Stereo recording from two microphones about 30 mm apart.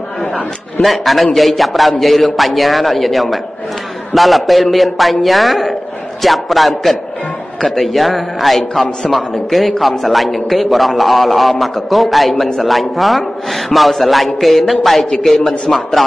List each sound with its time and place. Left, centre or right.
0.8 s a man's voice: centre
15.7 s a man's voice: centre